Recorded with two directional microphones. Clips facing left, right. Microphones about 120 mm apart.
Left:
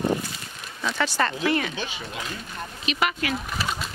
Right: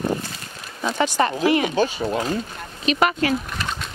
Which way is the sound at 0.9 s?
15° right (ahead or behind).